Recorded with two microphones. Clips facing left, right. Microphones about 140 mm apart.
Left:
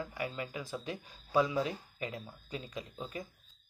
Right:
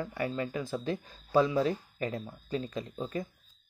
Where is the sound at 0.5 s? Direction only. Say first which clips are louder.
Right 6 dB; 15° left (ahead or behind).